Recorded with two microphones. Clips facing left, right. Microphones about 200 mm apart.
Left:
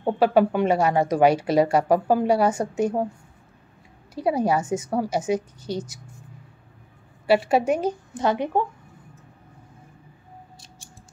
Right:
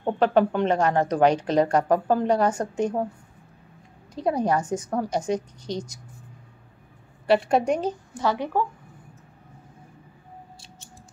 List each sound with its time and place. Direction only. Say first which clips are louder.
0.0 s a woman's voice: left 2 dB; 10° left (ahead or behind)
4.1 s a woman's voice: left 1 dB; 5° left (ahead or behind)
7.2 s a woman's voice: left 1 dB; 5° left (ahead or behind)
8.1 s a woman's voice: left 3 dB; 20° left (ahead or behind)